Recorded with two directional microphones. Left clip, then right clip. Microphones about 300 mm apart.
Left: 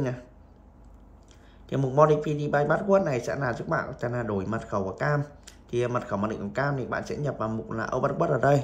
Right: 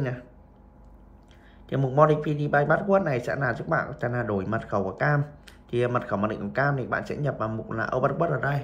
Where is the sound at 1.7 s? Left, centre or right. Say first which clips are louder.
Even; centre.